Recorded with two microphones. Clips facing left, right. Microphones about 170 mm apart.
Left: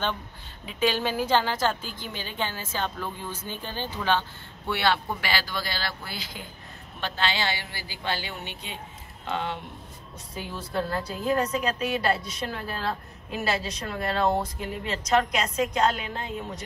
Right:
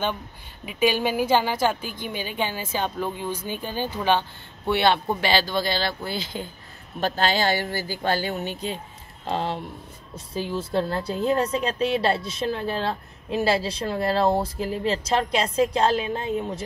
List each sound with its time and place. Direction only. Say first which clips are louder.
0.7 s a woman's voice: right 4 dB; 10° right (ahead or behind)
7.0 s a woman's voice: right 6 dB; 40° right (ahead or behind); by 16.6 s 25° right (ahead or behind)